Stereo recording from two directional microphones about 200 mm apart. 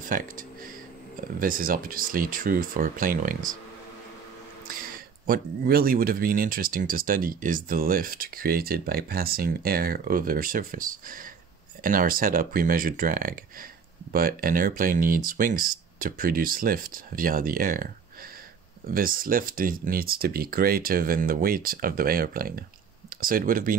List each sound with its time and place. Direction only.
0.0 s speech: 45° right (ahead or behind)
4.6 s speech: 45° right (ahead or behind)